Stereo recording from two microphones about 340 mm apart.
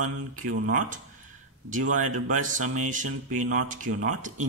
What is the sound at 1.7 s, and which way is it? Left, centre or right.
Speech, right.